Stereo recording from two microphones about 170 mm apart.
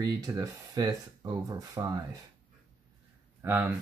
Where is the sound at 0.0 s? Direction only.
20° right (ahead or behind).